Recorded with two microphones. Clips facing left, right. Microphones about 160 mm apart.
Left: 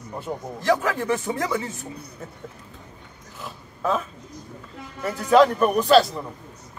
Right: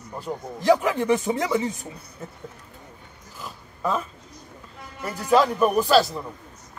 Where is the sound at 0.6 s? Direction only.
20° right (ahead or behind).